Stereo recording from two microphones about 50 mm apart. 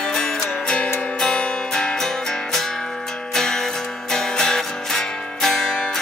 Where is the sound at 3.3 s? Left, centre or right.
Centre.